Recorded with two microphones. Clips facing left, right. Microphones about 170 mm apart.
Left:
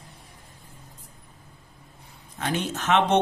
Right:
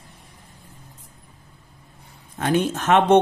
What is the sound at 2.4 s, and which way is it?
Speech, 50° right (ahead or behind).